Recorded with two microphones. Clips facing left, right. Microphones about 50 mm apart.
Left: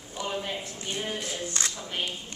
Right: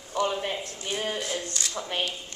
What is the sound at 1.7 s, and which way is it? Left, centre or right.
Speech, right.